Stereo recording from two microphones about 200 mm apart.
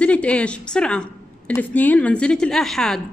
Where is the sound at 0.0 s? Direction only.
5° left (ahead or behind).